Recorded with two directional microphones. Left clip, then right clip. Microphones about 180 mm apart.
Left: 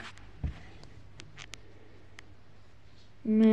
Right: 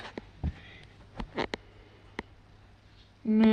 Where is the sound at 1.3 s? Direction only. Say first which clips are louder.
Right 15 dB; 25° left (ahead or behind).